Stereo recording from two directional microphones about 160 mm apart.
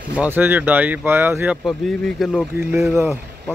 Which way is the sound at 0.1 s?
10° right (ahead or behind).